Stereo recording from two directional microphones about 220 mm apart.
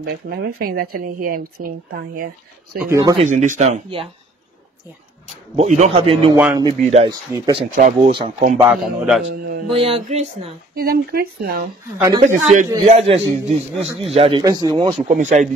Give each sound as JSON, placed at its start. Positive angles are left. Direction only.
{"t": 0.0, "sound": "speech", "side_deg": -45}
{"t": 2.9, "sound": "speech", "side_deg": -15}
{"t": 3.2, "sound": "speech", "side_deg": -35}
{"t": 5.2, "sound": "a man's voice", "side_deg": -30}
{"t": 6.3, "sound": "speech", "side_deg": -10}
{"t": 6.8, "sound": "a man's voice", "side_deg": -30}
{"t": 7.1, "sound": "speech", "side_deg": -15}
{"t": 7.7, "sound": "a man's voice", "side_deg": -35}
{"t": 8.5, "sound": "a man's voice", "side_deg": -5}
{"t": 9.7, "sound": "a man's voice", "side_deg": -25}
{"t": 10.8, "sound": "a man's voice", "side_deg": -45}
{"t": 14.4, "sound": "speech", "side_deg": -15}
{"t": 15.0, "sound": "speech", "side_deg": -35}